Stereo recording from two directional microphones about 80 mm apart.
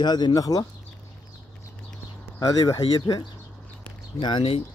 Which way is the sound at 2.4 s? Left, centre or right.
Left.